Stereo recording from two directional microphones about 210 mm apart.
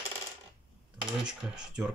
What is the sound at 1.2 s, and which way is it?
Speech, 5° right (ahead or behind).